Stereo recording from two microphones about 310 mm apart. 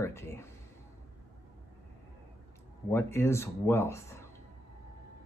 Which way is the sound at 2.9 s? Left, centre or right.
Centre.